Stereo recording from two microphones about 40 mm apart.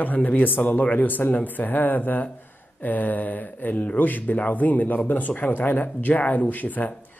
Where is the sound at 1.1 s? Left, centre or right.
Left.